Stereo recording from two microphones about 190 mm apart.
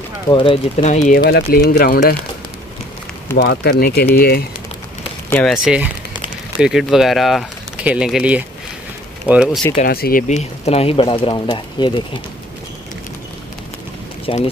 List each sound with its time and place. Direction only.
0.3 s speech: 25° left (ahead or behind); by 2.1 s 50° left (ahead or behind)
3.3 s speech: 60° left (ahead or behind)
5.3 s speech: centre (ahead or behind)
9.8 s speech: 55° left (ahead or behind)
10.2 s speech: 35° left (ahead or behind)
14.2 s speech: 30° left (ahead or behind)